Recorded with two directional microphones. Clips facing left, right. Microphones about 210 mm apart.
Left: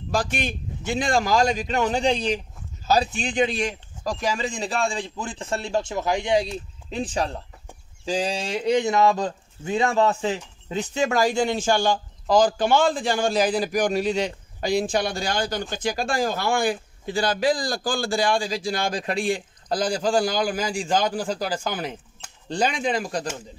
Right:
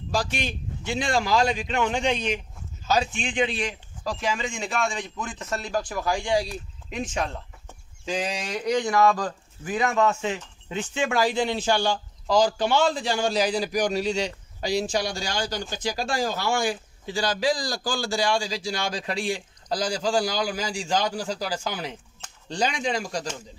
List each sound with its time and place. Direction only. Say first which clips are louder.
0.1 s a man's voice: left 2 dB; 55° left (ahead or behind)